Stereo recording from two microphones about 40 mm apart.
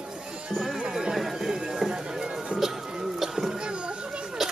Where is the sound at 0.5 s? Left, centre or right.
Centre.